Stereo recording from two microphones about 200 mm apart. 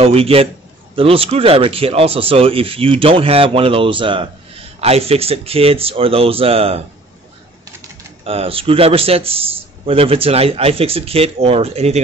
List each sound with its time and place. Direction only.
0.0 s speech: 30° right (ahead or behind)
8.2 s speech: 30° right (ahead or behind)